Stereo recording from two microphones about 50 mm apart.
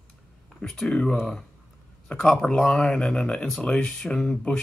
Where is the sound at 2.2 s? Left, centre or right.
Centre.